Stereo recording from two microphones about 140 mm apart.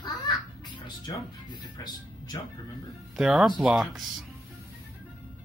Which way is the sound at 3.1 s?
5° right (ahead or behind).